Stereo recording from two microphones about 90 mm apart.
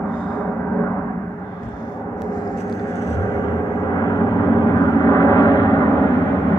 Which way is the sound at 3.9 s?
45° left (ahead or behind).